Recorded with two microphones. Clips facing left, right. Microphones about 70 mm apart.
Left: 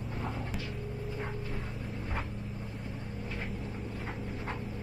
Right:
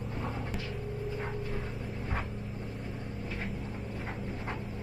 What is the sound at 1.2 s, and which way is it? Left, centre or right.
Music, centre.